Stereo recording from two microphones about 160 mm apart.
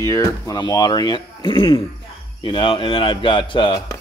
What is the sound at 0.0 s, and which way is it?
Speech, 20° left (ahead or behind).